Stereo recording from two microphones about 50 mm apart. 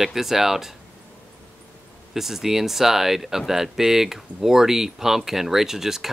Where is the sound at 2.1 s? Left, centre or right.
Centre.